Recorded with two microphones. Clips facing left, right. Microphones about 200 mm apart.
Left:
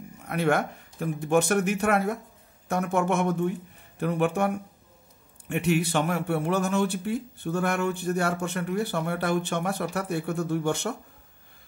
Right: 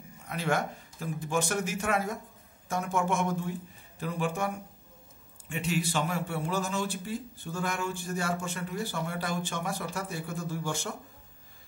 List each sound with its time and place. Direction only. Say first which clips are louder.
0.2 s a man's voice: left 5 dB; 60° left (ahead or behind)